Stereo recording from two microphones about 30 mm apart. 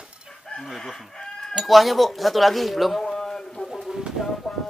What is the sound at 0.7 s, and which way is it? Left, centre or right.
Chicken, centre.